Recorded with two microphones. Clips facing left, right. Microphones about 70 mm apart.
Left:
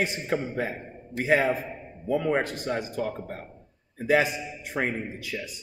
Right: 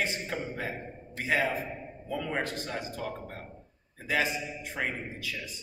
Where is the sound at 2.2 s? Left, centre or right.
Left.